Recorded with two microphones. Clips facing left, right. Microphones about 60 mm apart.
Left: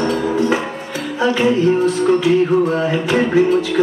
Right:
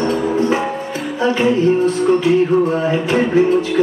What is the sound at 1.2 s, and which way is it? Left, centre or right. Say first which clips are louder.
Music: even; right.